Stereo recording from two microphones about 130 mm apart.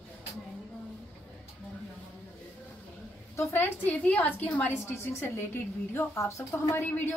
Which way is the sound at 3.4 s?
15° left (ahead or behind).